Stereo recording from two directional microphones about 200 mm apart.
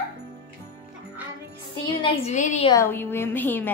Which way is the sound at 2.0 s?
35° left (ahead or behind).